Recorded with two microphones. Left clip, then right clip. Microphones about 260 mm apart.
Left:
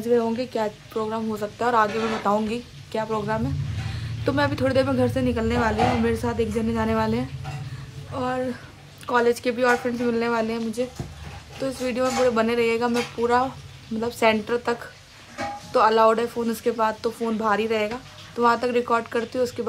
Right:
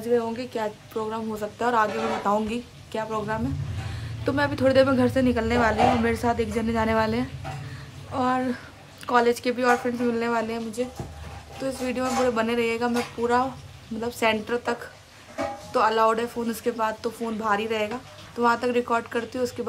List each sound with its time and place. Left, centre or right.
0.1 s a woman's voice: centre